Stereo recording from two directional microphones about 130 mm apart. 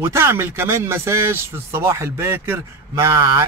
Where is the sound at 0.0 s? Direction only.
20° right (ahead or behind).